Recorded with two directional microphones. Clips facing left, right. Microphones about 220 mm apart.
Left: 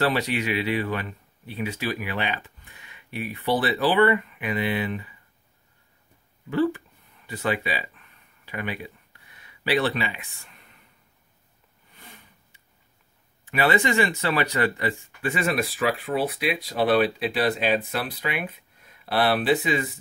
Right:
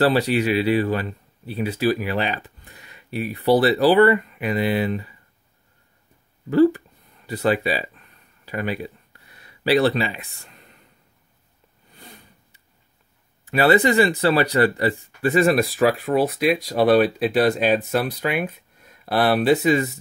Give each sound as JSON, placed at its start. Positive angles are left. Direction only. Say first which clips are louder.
{"t": 0.0, "sound": "speech", "louder": "right 6 dB", "side_deg": -35}
{"t": 6.5, "sound": "speech", "louder": "right 8 dB", "side_deg": -40}
{"t": 7.2, "sound": "a sound", "louder": "right 6 dB", "side_deg": -40}
{"t": 11.9, "sound": "sniff", "louder": "right 4 dB", "side_deg": -35}
{"t": 13.5, "sound": "speech", "louder": "right 6 dB", "side_deg": -35}